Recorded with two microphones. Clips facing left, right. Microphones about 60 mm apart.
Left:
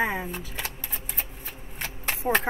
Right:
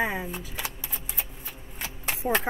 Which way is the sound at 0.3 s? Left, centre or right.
Centre.